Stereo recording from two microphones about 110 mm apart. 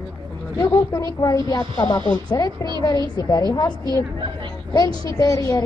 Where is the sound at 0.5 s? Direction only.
30° left (ahead or behind).